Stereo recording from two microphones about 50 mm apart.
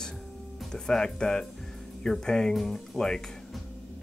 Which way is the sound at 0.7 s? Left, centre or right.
Centre.